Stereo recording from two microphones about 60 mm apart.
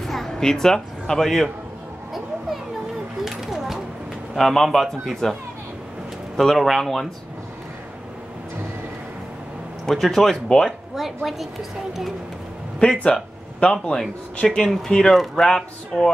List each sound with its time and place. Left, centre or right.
0.0 s speech: centre
3.3 s a sound: centre
4.4 s a man's voice: centre
6.3 s a man's voice: centre
9.8 s a man's voice: centre
13.0 s speech: centre
14.6 s speech: centre